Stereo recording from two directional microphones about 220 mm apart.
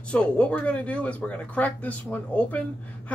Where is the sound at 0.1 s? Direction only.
5° left (ahead or behind).